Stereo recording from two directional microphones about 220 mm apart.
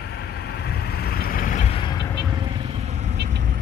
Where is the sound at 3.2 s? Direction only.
45° right (ahead or behind).